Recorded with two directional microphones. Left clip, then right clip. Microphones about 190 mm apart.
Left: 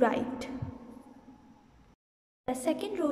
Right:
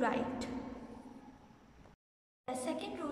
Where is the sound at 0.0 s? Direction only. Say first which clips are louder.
Left 7 dB; 30° left (ahead or behind).